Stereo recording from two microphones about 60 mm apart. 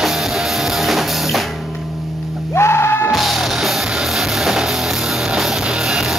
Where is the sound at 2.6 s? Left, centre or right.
Left.